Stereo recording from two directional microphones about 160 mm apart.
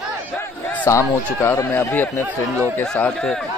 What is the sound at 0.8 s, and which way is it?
Speech, 15° left (ahead or behind).